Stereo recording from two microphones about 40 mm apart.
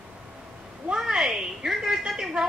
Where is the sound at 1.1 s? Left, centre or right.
Centre.